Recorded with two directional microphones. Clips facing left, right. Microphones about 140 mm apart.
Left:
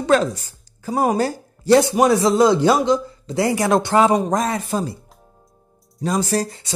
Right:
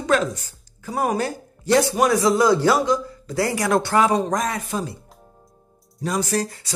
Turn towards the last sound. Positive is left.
turn(degrees=30)  # may be behind; listen again after turning